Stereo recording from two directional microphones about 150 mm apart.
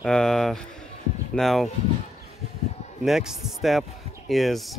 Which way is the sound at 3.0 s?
Centre (ahead or behind).